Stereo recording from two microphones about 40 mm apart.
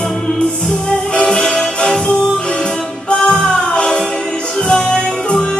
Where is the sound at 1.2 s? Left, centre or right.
Left.